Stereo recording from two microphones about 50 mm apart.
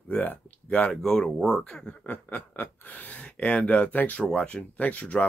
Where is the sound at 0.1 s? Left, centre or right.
Left.